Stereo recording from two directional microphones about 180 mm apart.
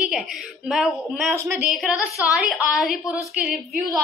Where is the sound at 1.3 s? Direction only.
15° right (ahead or behind).